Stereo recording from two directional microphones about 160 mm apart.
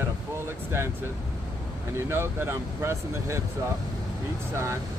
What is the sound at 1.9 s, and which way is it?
Speech, 15° right (ahead or behind).